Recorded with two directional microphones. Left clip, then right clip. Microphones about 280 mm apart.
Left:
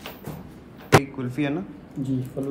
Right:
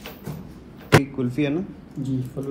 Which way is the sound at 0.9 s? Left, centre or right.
Centre.